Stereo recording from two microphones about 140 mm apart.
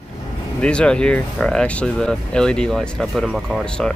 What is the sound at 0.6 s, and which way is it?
Speech, 5° left (ahead or behind).